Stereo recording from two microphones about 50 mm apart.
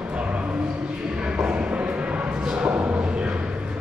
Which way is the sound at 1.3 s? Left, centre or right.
Right.